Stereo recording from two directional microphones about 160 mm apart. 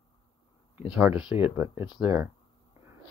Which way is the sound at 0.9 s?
10° right (ahead or behind).